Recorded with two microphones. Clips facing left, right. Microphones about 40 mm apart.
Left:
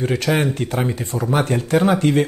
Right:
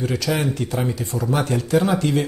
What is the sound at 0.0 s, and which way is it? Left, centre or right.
Speech, left.